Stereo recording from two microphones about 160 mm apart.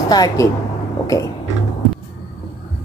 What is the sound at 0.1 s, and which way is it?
Speech, 25° left (ahead or behind).